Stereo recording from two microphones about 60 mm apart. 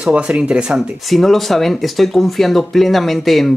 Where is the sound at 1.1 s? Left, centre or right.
Centre.